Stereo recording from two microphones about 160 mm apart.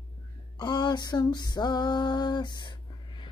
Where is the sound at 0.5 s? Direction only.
25° left (ahead or behind).